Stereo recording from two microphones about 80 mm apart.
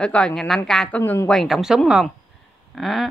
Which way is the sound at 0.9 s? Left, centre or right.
Left.